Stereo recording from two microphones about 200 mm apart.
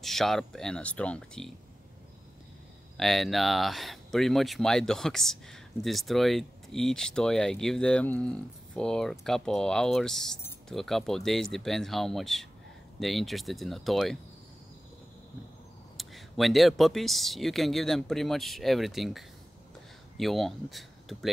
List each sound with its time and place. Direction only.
0.0 s speech: centre (ahead or behind)
3.0 s speech: centre (ahead or behind)
16.0 s speech: centre (ahead or behind)